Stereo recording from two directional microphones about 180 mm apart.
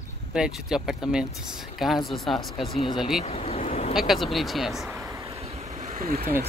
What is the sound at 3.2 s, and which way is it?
Vehicle, 35° left (ahead or behind).